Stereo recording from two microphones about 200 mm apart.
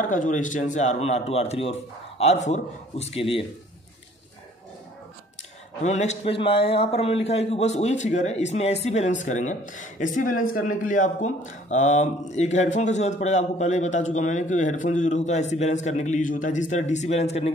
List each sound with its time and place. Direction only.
0.0 s a man's voice: 40° left (ahead or behind)
5.8 s a man's voice: 35° left (ahead or behind)